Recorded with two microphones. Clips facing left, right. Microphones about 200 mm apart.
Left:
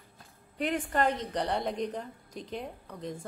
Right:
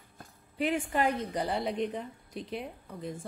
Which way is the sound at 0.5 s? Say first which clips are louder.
Even; 5° right (ahead or behind).